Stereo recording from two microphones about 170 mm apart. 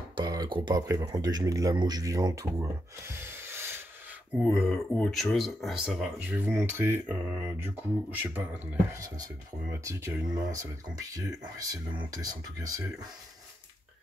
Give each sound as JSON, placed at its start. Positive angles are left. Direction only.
{"t": 0.1, "sound": "speech", "side_deg": -25}
{"t": 4.4, "sound": "speech", "side_deg": 0}